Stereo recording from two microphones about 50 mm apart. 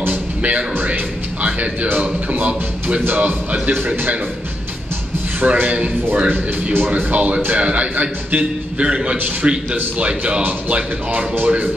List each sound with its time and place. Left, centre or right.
0.1 s music: right
1.4 s a man's voice: right
5.4 s a man's voice: right